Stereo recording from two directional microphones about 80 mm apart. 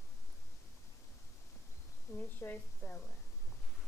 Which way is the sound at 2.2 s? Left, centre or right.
Left.